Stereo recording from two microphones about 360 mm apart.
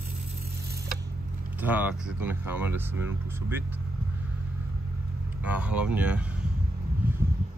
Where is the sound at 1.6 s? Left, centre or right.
Centre.